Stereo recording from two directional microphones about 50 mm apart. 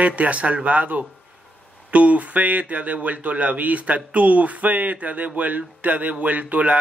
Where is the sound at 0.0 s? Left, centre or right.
Right.